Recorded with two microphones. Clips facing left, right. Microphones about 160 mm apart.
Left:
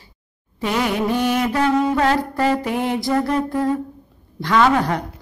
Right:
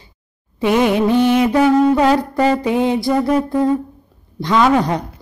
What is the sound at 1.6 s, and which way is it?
Music, 15° right (ahead or behind).